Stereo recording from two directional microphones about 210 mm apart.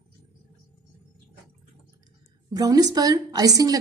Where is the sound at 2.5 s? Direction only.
20° right (ahead or behind).